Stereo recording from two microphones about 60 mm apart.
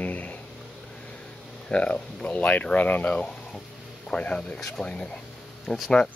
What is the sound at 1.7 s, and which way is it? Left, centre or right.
Speech, centre.